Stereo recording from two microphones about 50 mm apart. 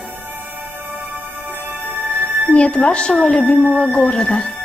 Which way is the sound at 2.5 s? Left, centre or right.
Left.